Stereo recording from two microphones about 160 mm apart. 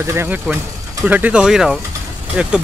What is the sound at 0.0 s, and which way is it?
Speech, 15° right (ahead or behind).